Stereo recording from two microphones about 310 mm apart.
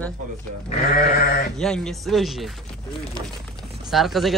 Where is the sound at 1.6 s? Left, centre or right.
Centre.